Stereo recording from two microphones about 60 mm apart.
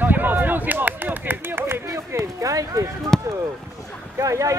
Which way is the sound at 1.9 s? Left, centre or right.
Right.